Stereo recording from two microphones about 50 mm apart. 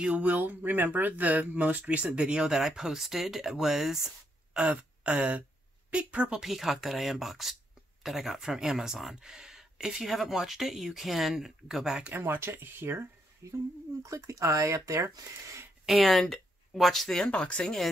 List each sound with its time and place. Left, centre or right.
0.0 s speech: right
2.4 s speech: centre
4.6 s a woman's voice: right
6.4 s speech: centre
12.1 s speech: right
14.0 s speech: right
15.8 s speech: centre
17.3 s speech: left